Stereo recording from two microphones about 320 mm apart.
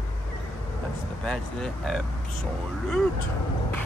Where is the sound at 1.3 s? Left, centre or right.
Centre.